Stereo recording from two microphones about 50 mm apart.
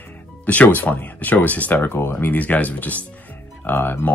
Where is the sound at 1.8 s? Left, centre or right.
Left.